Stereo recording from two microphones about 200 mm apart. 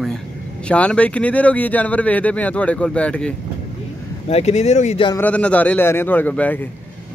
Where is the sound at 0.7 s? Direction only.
5° left (ahead or behind).